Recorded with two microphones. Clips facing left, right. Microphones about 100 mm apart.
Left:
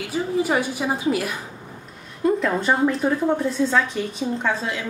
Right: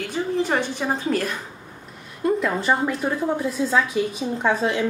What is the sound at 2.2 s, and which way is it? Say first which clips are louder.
A woman's voice: left 1 dB; centre (ahead or behind).